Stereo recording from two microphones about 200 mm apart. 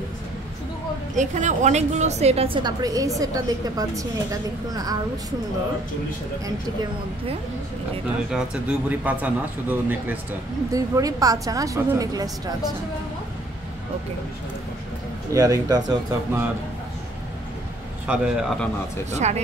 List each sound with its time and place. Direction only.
1.1 s a woman's voice: 35° right (ahead or behind); by 4.9 s 20° right (ahead or behind)
8.3 s a woman's voice: 5° right (ahead or behind)
15.3 s a woman's voice: 15° right (ahead or behind)
18.0 s a man's voice: 5° right (ahead or behind)
19.0 s a woman's voice: 35° right (ahead or behind)